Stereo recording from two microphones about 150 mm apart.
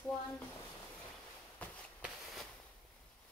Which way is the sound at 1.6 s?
10° left (ahead or behind).